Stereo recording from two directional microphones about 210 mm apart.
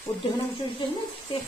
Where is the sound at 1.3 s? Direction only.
25° left (ahead or behind).